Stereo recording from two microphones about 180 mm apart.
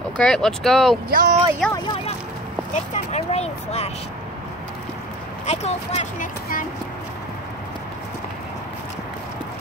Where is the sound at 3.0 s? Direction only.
35° left (ahead or behind).